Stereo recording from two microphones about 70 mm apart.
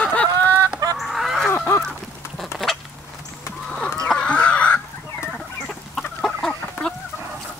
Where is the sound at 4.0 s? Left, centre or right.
Centre.